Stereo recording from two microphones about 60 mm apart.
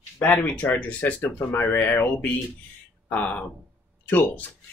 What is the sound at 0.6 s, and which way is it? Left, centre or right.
Speech, left.